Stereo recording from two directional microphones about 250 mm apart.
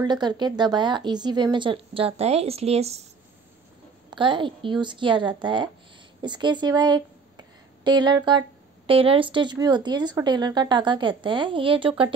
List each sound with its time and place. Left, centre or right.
0.0 s speech: centre
4.1 s a woman's voice: centre